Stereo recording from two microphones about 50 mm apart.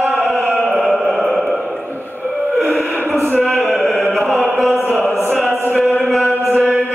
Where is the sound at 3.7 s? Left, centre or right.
Centre.